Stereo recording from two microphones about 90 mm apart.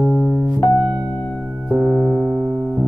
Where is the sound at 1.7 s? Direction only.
30° right (ahead or behind).